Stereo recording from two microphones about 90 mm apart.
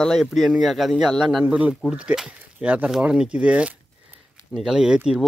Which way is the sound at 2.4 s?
15° right (ahead or behind).